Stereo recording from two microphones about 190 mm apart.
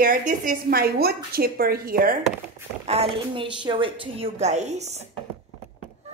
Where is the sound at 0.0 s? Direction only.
45° right (ahead or behind).